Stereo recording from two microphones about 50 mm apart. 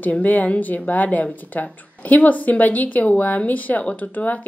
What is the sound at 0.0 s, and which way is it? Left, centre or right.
Speech, left.